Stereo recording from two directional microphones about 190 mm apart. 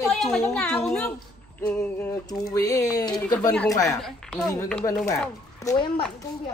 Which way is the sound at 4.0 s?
Centre (ahead or behind).